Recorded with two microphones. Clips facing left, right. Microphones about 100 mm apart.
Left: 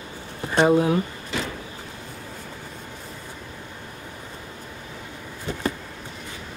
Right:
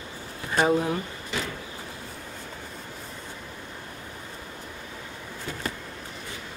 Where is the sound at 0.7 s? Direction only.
5° left (ahead or behind).